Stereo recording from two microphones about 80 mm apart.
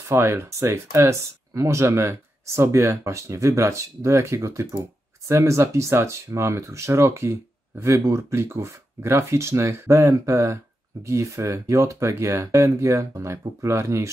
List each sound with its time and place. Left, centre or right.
0.1 s speech: right